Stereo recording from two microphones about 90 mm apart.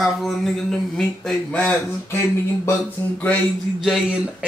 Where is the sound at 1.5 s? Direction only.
15° left (ahead or behind).